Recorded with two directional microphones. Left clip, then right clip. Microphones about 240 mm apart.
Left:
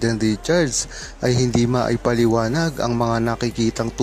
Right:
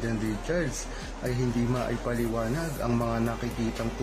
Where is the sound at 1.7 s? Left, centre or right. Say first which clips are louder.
Left 11 dB; left.